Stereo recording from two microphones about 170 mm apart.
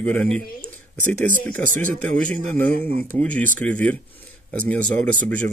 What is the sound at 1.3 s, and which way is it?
Speech, 50° right (ahead or behind).